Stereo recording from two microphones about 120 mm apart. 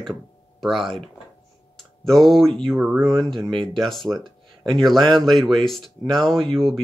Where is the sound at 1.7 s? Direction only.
Centre (ahead or behind).